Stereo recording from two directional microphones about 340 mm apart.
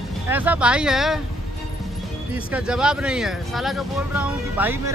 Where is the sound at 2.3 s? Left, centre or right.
Centre.